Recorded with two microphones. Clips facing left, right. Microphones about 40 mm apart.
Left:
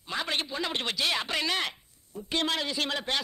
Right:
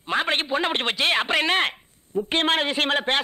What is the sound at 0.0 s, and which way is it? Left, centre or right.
A man's voice, right.